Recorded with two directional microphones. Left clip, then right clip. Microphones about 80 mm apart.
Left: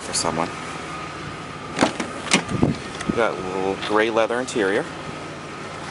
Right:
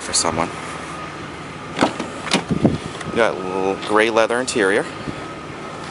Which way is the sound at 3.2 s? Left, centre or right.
Centre.